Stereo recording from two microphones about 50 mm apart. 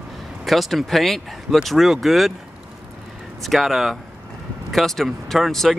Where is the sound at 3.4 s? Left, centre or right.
Centre.